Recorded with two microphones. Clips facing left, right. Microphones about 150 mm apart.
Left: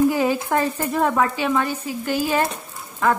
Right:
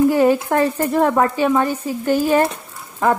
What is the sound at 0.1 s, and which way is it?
Speech, 55° right (ahead or behind).